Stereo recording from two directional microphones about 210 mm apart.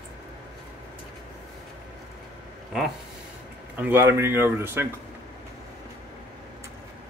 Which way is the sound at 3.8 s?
10° right (ahead or behind).